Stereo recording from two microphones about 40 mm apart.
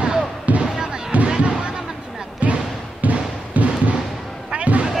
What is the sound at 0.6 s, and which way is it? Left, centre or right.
Music, centre.